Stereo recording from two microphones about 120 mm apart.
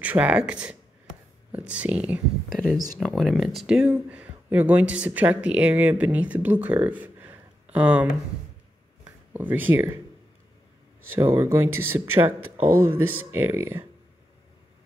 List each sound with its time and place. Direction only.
0.0 s speech: 10° right (ahead or behind)
2.5 s speech: 5° left (ahead or behind); by 8.2 s 10° right (ahead or behind)
9.3 s speech: 15° right (ahead or behind)
11.1 s speech: 25° right (ahead or behind)